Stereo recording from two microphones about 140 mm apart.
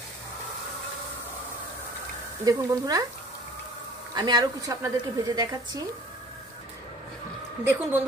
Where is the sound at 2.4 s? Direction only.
25° right (ahead or behind).